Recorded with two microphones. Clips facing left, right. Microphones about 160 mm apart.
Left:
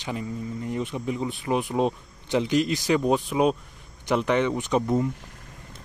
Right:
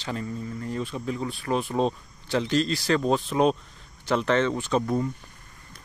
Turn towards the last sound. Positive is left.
turn(degrees=20)  # may be behind; listen again after turning